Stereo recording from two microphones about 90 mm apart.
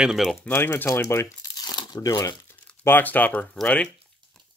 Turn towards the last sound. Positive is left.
turn(degrees=10)  # may be behind; listen again after turning